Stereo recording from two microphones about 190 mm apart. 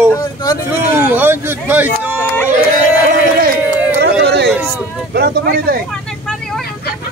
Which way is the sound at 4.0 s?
60° right (ahead or behind).